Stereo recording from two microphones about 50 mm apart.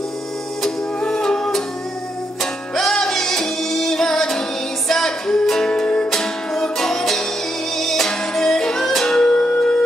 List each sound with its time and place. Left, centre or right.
0.6 s music: centre
2.7 s music: centre